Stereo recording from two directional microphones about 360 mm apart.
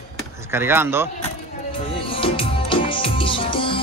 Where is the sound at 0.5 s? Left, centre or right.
Centre.